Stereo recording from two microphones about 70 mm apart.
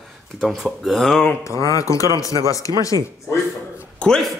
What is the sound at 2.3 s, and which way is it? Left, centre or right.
Speech, right.